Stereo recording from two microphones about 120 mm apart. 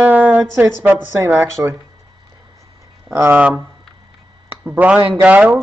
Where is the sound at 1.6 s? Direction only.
25° right (ahead or behind).